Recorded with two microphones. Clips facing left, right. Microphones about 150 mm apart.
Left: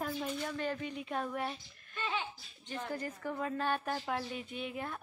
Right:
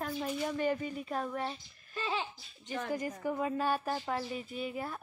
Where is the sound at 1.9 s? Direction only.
30° right (ahead or behind).